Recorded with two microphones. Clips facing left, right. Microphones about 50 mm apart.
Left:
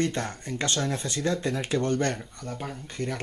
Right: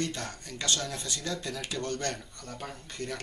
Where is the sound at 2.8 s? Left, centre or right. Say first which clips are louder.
Left 5 dB; left.